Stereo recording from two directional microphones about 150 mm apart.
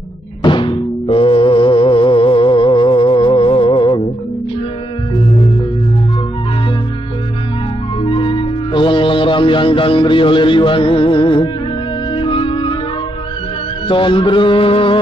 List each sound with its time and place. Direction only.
0.4 s music: 35° left (ahead or behind)
8.0 s music: 35° left (ahead or behind)
13.8 s music: 35° left (ahead or behind)